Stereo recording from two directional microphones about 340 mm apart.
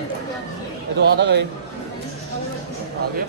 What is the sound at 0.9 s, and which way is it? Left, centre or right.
Speech, right.